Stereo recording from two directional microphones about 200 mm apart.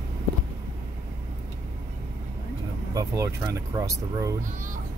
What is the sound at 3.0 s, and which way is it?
Speech, 15° right (ahead or behind).